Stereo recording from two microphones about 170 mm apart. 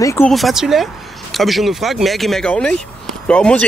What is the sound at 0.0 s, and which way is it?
Speech, 15° left (ahead or behind).